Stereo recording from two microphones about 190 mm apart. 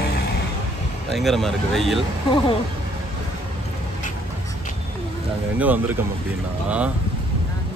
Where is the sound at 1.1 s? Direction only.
Centre (ahead or behind).